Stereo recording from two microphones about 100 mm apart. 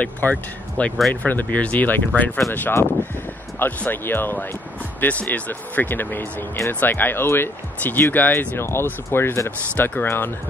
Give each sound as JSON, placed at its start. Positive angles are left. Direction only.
{"t": 0.0, "sound": "speech", "side_deg": 15}